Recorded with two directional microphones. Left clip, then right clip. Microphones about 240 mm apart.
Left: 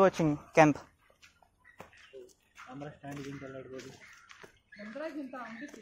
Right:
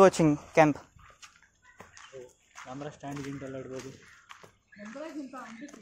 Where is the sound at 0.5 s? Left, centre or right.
Centre.